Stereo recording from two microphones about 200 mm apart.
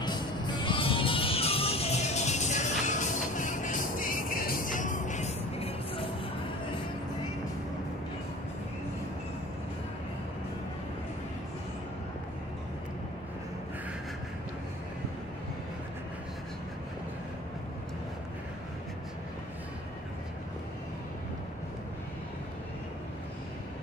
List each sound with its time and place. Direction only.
0.0 s music: 20° left (ahead or behind)